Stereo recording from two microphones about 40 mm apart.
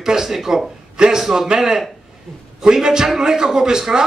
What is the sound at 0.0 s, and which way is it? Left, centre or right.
A man's voice, centre.